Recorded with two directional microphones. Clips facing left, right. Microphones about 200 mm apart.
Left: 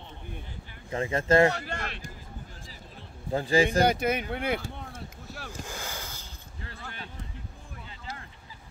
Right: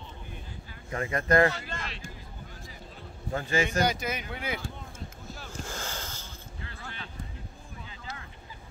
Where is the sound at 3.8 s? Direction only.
60° left (ahead or behind).